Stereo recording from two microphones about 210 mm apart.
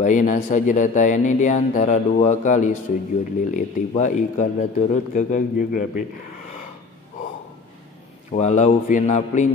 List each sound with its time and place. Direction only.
0.0 s speech: 35° left (ahead or behind)
8.3 s speech: 35° left (ahead or behind)